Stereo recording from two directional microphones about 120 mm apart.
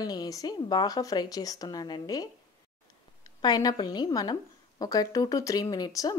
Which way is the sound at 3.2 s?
35° left (ahead or behind).